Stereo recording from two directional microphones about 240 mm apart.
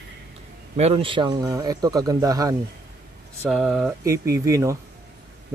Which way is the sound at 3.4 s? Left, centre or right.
Centre.